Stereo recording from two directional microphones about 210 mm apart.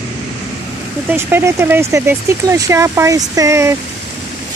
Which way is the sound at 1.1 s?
10° right (ahead or behind).